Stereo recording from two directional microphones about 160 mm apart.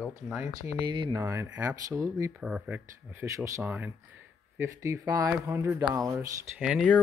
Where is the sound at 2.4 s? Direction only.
5° right (ahead or behind).